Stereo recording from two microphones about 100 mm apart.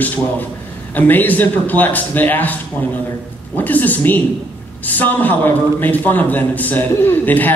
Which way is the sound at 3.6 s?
15° left (ahead or behind).